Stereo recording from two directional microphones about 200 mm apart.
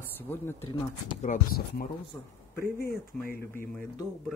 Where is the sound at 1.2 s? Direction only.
40° left (ahead or behind).